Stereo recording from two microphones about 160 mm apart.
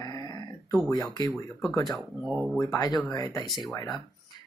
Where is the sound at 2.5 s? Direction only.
20° left (ahead or behind).